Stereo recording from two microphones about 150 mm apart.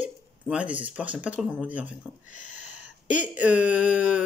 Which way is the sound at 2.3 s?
60° left (ahead or behind).